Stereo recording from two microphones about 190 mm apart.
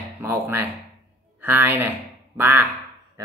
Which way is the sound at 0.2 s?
10° right (ahead or behind).